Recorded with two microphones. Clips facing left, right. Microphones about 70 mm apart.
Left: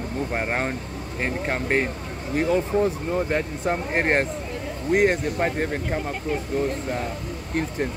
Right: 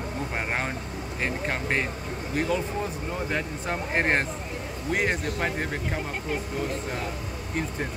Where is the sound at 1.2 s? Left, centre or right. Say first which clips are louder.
Left 3 dB; left.